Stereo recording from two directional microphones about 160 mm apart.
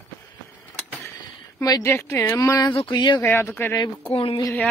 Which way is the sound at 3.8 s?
30° left (ahead or behind).